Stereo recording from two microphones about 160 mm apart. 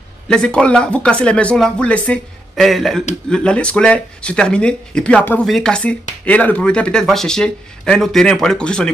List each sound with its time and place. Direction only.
0.3 s speech: 5° left (ahead or behind)